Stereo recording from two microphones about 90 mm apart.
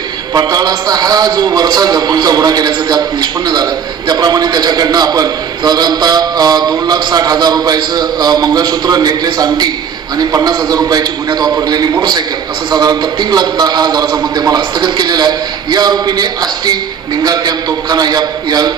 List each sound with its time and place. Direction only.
0.3 s a man's voice: 45° right (ahead or behind)